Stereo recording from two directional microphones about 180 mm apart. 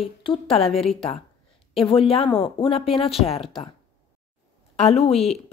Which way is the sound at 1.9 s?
30° left (ahead or behind).